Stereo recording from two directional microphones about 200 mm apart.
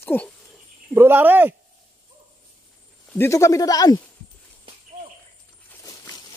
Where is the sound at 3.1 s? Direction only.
15° left (ahead or behind).